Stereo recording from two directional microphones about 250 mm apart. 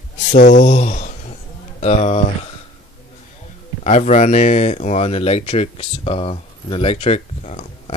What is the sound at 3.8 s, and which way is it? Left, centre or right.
Speech, left.